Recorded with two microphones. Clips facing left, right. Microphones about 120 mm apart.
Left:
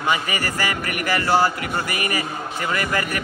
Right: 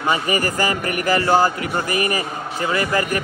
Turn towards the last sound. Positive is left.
turn(degrees=-25)  # may be behind; listen again after turning